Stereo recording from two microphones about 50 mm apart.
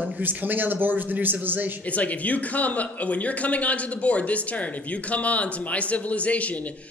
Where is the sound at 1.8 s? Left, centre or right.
Left.